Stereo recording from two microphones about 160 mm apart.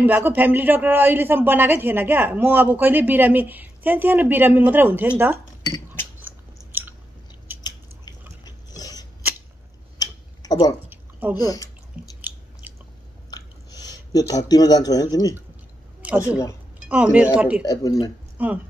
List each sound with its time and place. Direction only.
0.0 s a man's voice: 10° right (ahead or behind)
6.2 s biting: 10° right (ahead or behind)
8.5 s dog: 25° left (ahead or behind)
9.9 s a sound: 25° left (ahead or behind)
10.9 s a sound: 10° right (ahead or behind)
11.3 s speech: 25° left (ahead or behind)
12.2 s chewing: 10° right (ahead or behind)
13.3 s a sound: 25° left (ahead or behind)
16.2 s speech: 20° left (ahead or behind)
16.9 s a man's voice: 10° right (ahead or behind)
17.6 s speech: 25° left (ahead or behind)
18.4 s a man's voice: 10° right (ahead or behind)